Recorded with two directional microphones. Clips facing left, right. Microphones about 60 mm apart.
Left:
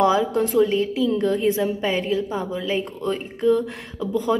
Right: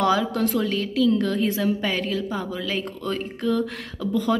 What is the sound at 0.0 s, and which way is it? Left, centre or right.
A woman's voice, left.